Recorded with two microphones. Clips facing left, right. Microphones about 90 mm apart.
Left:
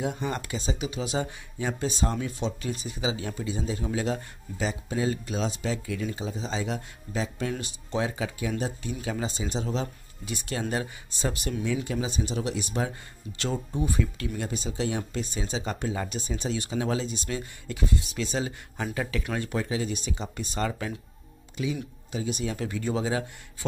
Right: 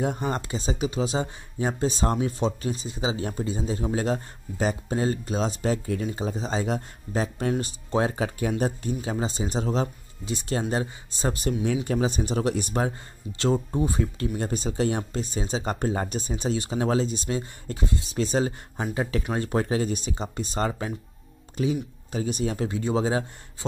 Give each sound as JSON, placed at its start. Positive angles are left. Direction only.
{"t": 0.0, "sound": "a man's voice", "side_deg": -40}
{"t": 9.0, "sound": "a man's voice", "side_deg": -35}
{"t": 11.6, "sound": "a man's voice", "side_deg": -50}